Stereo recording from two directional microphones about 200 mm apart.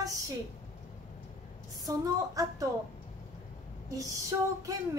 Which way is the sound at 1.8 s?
15° right (ahead or behind).